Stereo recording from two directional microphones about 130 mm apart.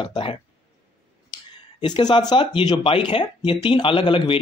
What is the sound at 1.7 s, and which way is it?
Speech, 40° left (ahead or behind).